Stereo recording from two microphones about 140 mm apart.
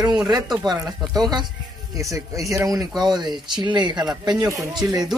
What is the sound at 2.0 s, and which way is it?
Speech, 20° right (ahead or behind).